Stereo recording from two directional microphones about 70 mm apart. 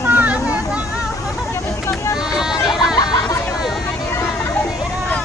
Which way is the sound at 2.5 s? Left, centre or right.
Left.